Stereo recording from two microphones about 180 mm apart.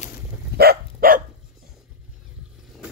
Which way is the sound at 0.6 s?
55° right (ahead or behind).